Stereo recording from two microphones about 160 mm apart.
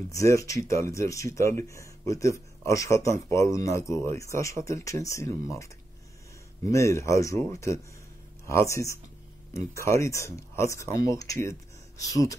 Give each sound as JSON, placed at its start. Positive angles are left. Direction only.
{"t": 0.1, "sound": "speech", "side_deg": 20}